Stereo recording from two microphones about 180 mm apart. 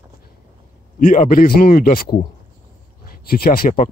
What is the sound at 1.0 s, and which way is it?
Speech, 45° left (ahead or behind).